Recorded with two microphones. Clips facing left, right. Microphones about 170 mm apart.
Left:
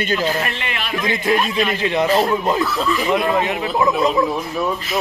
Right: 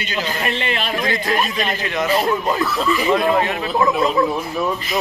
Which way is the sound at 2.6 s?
Centre (ahead or behind).